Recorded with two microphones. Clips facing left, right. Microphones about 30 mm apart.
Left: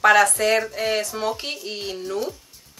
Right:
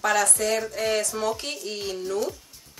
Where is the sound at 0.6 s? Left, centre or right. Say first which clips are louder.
Left 2 dB; centre.